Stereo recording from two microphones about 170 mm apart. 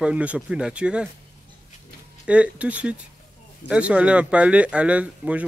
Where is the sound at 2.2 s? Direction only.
5° right (ahead or behind).